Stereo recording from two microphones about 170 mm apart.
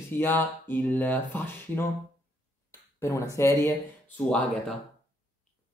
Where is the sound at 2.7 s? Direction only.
15° left (ahead or behind).